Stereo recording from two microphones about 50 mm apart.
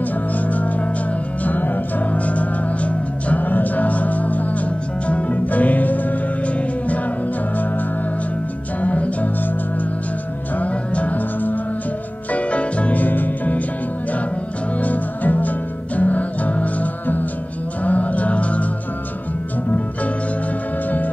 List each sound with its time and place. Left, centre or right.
0.5 s music: left
8.8 s music: left
10.6 s music: left
12.3 s music: left
14.8 s music: left